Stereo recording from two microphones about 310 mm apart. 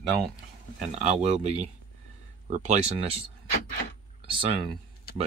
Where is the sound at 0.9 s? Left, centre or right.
Right.